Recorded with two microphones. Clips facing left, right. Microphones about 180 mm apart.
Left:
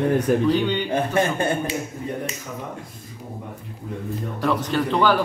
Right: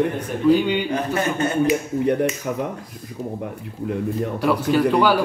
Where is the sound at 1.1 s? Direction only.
30° left (ahead or behind).